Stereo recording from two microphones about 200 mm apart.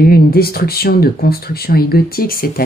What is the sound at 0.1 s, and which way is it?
Speech, 50° left (ahead or behind).